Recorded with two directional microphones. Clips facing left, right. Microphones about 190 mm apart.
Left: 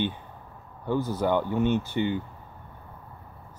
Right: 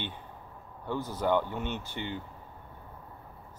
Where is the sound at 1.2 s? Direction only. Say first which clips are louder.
Left 3 dB; 10° left (ahead or behind).